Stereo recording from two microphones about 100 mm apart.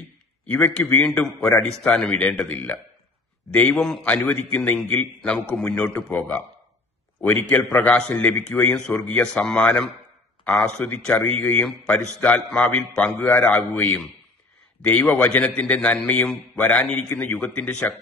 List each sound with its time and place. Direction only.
0.5 s a man's voice: 15° left (ahead or behind)
3.7 s a man's voice: 5° left (ahead or behind)
7.4 s a man's voice: 15° left (ahead or behind)